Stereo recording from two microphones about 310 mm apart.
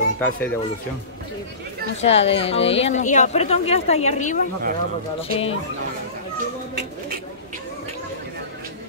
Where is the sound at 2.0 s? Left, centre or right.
Centre.